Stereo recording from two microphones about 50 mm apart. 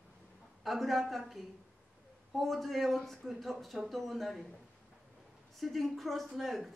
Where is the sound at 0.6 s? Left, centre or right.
Centre.